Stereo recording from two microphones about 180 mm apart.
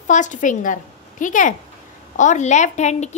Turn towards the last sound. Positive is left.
turn(degrees=40)  # may be behind; listen again after turning